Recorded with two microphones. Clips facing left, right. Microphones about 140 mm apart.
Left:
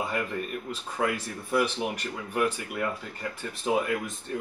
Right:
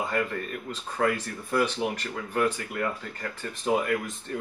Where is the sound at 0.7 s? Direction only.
10° left (ahead or behind).